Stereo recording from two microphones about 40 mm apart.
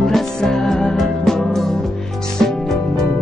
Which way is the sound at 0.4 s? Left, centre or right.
Centre.